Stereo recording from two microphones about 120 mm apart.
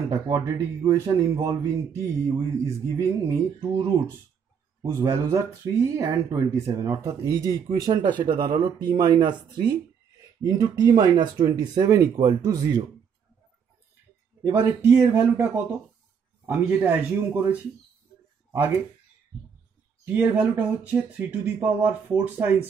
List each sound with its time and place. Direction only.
0.1 s speech: 25° right (ahead or behind)
4.8 s speech: 25° right (ahead or behind)
14.7 s speech: 20° right (ahead or behind)
18.5 s speech: 20° right (ahead or behind)
20.1 s speech: 15° right (ahead or behind)